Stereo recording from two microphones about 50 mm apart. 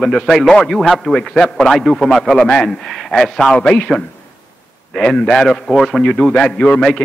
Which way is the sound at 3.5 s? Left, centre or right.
Centre.